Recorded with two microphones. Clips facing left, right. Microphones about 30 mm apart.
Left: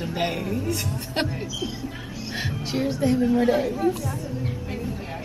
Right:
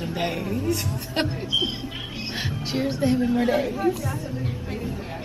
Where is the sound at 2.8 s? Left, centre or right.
Right.